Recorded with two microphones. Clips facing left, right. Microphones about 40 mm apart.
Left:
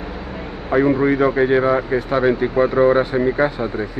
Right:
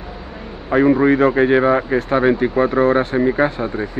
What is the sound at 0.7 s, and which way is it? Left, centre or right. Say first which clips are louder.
Speech: right 2 dB; centre.